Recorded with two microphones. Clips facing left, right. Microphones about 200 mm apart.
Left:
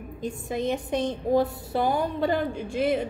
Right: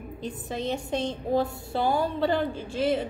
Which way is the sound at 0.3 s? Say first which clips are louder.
Left 3 dB; 15° left (ahead or behind).